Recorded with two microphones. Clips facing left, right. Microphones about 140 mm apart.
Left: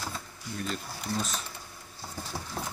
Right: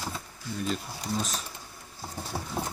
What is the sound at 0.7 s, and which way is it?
Speech, 15° right (ahead or behind).